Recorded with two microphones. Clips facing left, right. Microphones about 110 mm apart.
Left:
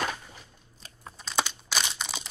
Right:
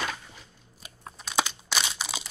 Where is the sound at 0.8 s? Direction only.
5° right (ahead or behind).